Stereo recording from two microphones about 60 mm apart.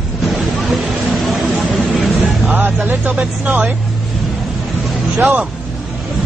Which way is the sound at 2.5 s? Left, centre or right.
Right.